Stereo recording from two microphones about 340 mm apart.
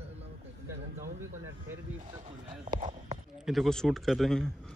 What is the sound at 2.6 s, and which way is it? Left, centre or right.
Clip-clop, right.